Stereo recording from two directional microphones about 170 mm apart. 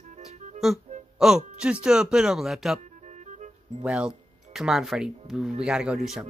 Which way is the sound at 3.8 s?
5° right (ahead or behind).